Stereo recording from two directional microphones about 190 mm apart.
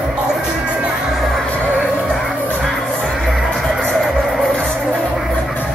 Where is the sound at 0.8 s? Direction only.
Centre (ahead or behind).